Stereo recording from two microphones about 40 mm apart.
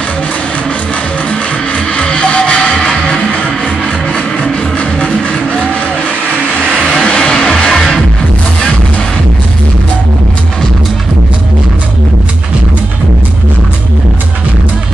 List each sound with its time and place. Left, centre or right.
2.0 s music: left
6.8 s vehicle: centre